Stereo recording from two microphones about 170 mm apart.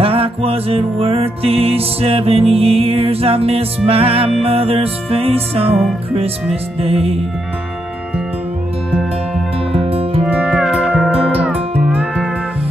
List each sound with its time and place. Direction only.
0.0 s music: 35° right (ahead or behind)
9.7 s music: 35° right (ahead or behind)
10.2 s music: 5° right (ahead or behind)